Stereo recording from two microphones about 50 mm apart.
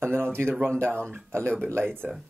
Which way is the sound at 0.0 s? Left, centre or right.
Right.